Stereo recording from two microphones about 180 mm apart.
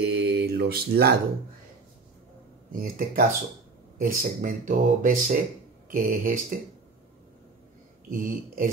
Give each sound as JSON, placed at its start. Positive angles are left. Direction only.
{"t": 0.0, "sound": "mantra", "side_deg": -60}
{"t": 2.7, "sound": "speech", "side_deg": -50}
{"t": 8.1, "sound": "speech", "side_deg": -50}